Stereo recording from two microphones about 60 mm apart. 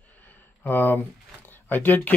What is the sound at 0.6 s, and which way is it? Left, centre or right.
Speech, left.